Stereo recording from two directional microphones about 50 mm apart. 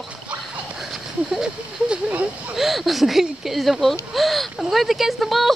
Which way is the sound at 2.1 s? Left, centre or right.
Right.